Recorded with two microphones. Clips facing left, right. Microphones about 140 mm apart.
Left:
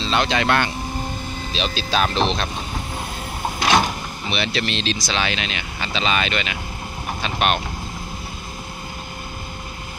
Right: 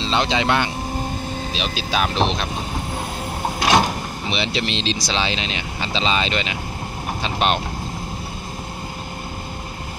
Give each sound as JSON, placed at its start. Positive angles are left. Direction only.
{"t": 0.0, "sound": "speech", "side_deg": -20}
{"t": 4.3, "sound": "speech", "side_deg": -20}